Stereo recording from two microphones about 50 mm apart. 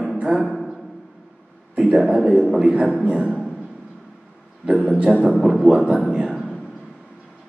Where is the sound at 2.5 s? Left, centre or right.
Centre.